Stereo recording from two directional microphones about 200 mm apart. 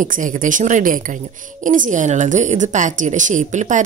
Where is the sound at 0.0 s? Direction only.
40° right (ahead or behind).